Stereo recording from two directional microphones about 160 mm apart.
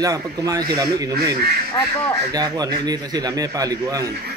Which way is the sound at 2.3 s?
25° right (ahead or behind).